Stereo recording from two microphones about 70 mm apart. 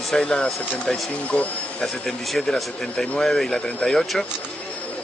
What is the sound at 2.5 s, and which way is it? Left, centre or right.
Speech, centre.